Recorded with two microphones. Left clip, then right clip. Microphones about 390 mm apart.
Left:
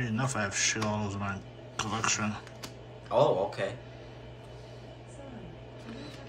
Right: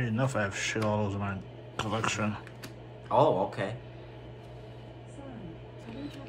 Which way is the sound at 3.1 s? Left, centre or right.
Centre.